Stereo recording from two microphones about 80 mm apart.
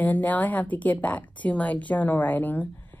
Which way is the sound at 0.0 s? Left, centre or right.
Left.